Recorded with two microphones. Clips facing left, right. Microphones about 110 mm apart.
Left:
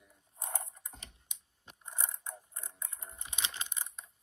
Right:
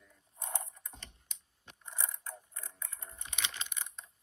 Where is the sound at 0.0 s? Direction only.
25° left (ahead or behind).